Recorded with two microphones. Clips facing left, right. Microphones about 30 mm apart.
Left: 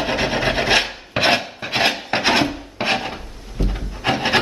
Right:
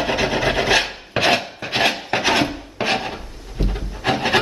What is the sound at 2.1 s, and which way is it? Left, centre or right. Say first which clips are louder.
Music: left 1 dB; left.